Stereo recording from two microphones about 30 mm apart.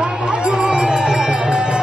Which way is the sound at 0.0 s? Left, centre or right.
Right.